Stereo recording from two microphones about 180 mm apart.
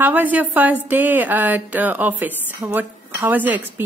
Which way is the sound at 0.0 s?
10° right (ahead or behind).